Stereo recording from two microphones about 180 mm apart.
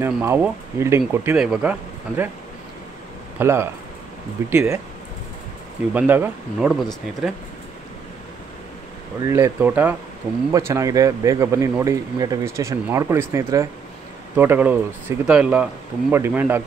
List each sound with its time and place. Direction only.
0.0 s speech: 15° right (ahead or behind)
1.3 s speech: 5° right (ahead or behind)
3.3 s speech: 15° right (ahead or behind)
5.9 s speech: 10° right (ahead or behind)
9.2 s speech: 15° right (ahead or behind)